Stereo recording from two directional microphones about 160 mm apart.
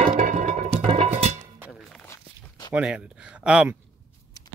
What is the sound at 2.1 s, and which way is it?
Walk, 25° left (ahead or behind).